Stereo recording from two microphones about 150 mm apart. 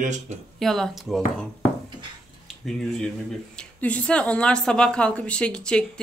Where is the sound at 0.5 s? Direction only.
Centre (ahead or behind).